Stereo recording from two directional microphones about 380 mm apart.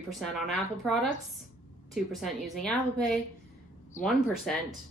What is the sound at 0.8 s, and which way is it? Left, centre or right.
Speech, centre.